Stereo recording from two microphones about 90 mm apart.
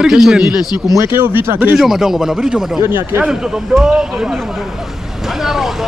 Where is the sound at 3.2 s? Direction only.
5° right (ahead or behind).